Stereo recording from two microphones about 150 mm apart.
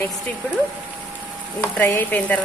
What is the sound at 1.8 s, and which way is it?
Stir, 15° left (ahead or behind).